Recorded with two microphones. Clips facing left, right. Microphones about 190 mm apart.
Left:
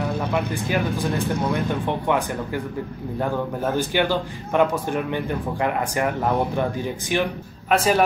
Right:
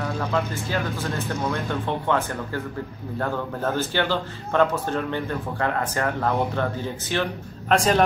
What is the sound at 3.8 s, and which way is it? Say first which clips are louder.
A man's voice: left 4 dB; 15° left (ahead or behind).